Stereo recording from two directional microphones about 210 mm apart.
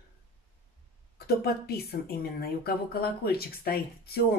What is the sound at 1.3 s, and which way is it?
Speech, 50° left (ahead or behind).